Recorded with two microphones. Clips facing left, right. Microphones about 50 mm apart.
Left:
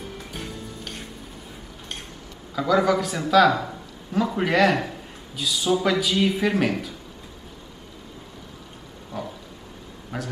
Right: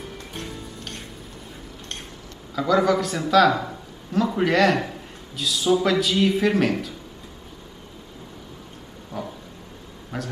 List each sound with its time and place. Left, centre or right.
0.3 s music: centre
2.5 s a man's voice: centre
10.1 s a sound: centre